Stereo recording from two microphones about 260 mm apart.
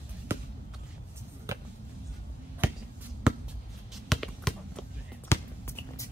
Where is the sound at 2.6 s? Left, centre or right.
Centre.